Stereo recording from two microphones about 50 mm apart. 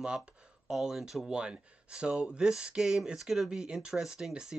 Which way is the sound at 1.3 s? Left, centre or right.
Centre.